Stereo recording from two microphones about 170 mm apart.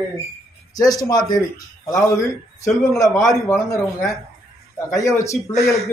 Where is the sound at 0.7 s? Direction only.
20° left (ahead or behind).